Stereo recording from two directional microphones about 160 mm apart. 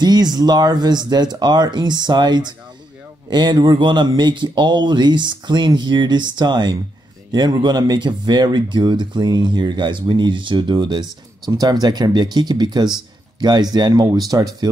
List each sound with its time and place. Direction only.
0.0 s speech: 25° right (ahead or behind)